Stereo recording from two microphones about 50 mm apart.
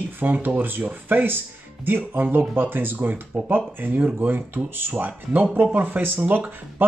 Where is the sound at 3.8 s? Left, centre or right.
Right.